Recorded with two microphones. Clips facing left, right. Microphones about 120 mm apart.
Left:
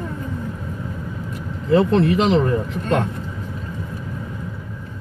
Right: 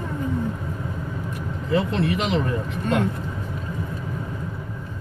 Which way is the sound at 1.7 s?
35° left (ahead or behind).